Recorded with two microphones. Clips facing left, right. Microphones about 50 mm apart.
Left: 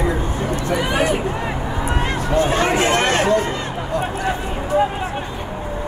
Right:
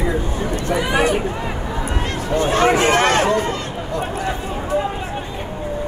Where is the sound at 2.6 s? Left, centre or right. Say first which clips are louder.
Right 2 dB; right.